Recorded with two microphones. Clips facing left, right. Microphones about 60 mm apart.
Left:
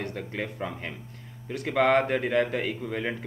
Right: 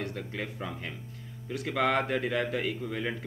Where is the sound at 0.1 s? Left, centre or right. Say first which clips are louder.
Left 3 dB; left.